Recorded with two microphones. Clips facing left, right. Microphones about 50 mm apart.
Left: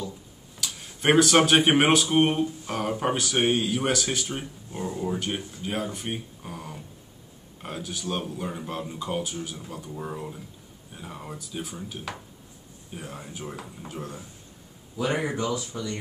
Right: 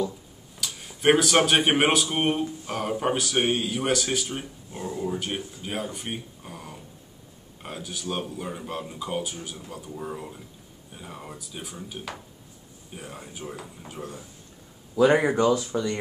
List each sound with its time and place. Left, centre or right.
0.6 s speech: centre
15.0 s speech: right